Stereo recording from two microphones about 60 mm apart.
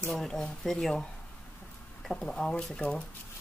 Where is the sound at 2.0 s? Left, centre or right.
Centre.